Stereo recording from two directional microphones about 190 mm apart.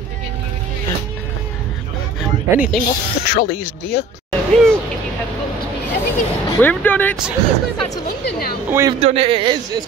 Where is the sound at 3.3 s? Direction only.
55° left (ahead or behind).